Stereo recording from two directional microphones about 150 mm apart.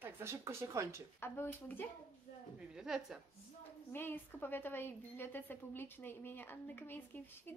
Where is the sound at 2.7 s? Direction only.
5° right (ahead or behind).